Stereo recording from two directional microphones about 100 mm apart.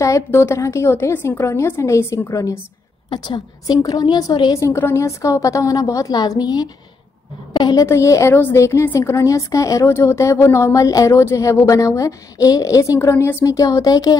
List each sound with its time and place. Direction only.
0.0 s a woman's voice: 30° left (ahead or behind)
3.1 s a woman's voice: 50° left (ahead or behind)
4.6 s a woman's voice: 25° left (ahead or behind)
13.1 s a woman's voice: 25° left (ahead or behind)